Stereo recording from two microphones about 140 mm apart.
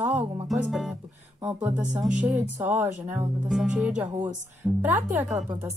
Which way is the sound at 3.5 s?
Centre (ahead or behind).